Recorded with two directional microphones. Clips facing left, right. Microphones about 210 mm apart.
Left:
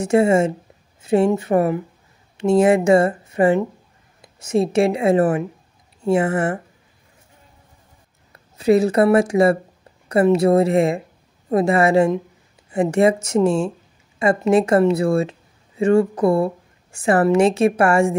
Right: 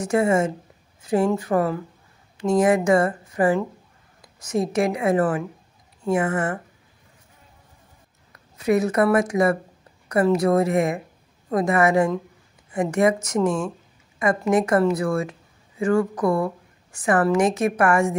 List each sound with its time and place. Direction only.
0.0 s a woman's voice: 25° left (ahead or behind)
8.3 s a woman's voice: 30° left (ahead or behind)